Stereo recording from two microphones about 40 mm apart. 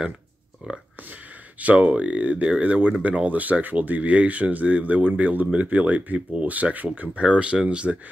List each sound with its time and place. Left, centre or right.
1.6 s speech: right
7.2 s speech: right